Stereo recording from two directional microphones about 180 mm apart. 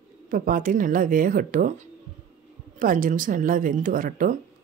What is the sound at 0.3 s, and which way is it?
Speech, 50° right (ahead or behind).